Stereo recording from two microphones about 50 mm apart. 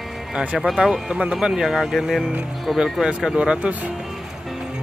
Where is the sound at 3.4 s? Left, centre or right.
Right.